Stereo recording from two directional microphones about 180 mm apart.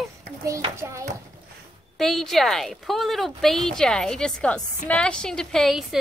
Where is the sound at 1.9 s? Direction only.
Centre (ahead or behind).